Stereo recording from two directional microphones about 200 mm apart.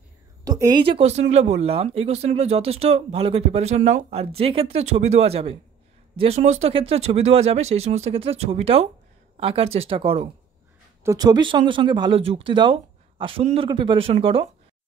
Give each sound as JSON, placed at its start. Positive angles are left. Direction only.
{"t": 0.5, "sound": "a woman's voice", "side_deg": -20}